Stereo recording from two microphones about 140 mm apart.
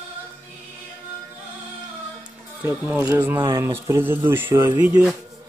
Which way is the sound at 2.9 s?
10° right (ahead or behind).